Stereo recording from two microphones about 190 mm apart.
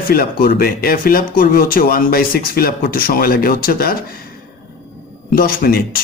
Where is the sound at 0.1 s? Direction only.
50° left (ahead or behind).